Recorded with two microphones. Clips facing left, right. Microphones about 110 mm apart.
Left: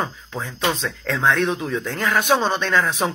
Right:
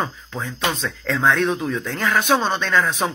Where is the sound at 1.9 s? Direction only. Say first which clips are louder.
Even; 25° left (ahead or behind).